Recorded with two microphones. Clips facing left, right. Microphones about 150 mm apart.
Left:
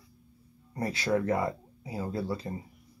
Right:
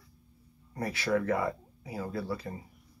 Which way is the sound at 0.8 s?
25° left (ahead or behind).